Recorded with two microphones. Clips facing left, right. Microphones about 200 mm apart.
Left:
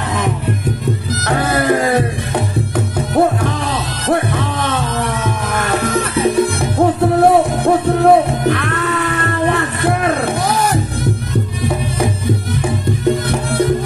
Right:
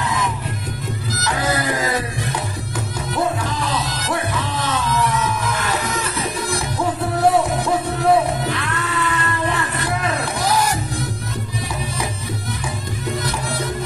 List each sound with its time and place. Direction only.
0.0 s music: 60° left (ahead or behind)